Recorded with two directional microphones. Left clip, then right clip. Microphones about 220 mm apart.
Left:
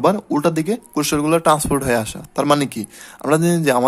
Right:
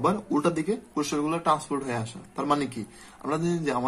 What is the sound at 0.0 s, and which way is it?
Speech, 45° left (ahead or behind).